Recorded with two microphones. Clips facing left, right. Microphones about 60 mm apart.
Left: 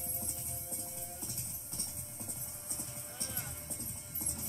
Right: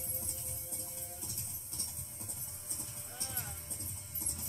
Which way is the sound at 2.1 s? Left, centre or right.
Left.